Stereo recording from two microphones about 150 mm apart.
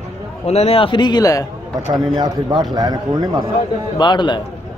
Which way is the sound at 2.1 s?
25° right (ahead or behind).